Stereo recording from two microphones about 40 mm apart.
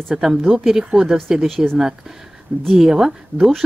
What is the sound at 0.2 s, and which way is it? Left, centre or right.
Speech, centre.